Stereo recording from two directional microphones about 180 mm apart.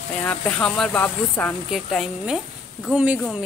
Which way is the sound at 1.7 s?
Centre (ahead or behind).